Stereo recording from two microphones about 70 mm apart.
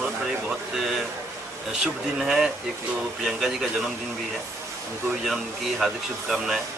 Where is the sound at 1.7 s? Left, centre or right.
Centre.